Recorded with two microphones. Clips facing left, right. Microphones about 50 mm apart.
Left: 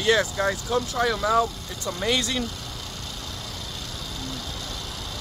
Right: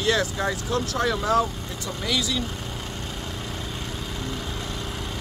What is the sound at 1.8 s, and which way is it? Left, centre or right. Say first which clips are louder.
Speech: left 2 dB; left.